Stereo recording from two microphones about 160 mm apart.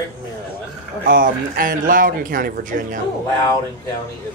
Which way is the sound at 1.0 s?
60° right (ahead or behind).